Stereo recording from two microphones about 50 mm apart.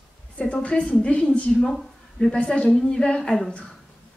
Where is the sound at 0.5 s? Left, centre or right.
Left.